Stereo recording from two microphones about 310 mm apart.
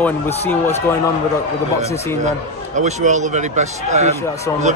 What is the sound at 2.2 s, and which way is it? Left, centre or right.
A man's voice, right.